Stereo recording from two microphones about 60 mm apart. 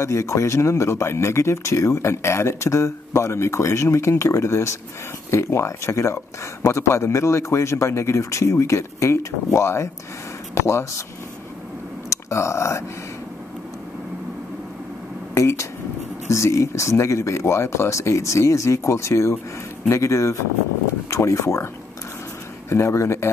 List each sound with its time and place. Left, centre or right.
0.0 s speech: left
12.1 s speech: left
15.3 s a sound: left
16.3 s speech: left
22.7 s speech: left